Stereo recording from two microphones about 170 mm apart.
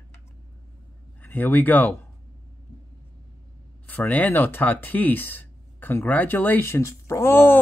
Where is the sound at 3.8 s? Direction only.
10° left (ahead or behind).